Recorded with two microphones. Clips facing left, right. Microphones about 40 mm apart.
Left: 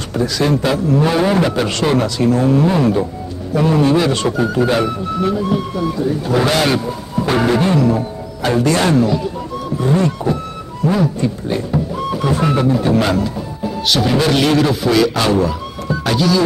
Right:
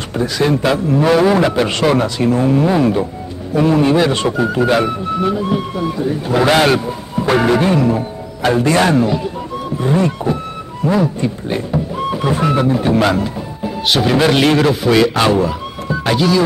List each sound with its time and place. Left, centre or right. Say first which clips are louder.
0.2 s speech: right 1 dB; right